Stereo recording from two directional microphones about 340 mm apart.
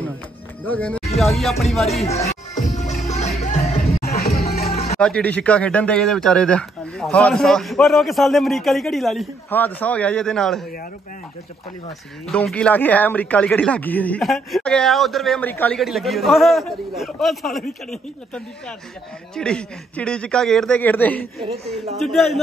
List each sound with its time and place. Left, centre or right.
0.7 s a man's voice: centre
2.5 s music: centre
5.0 s a man's voice: centre
12.3 s a man's voice: centre
19.3 s a man's voice: centre